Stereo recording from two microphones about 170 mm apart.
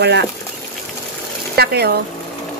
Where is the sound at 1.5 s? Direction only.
70° right (ahead or behind).